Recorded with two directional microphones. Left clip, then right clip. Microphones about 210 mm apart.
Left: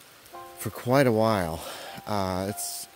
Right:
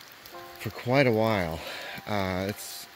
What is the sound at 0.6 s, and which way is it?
Speech, 40° left (ahead or behind).